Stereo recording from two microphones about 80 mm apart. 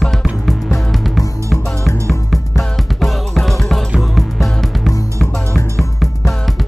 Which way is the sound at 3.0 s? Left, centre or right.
Centre.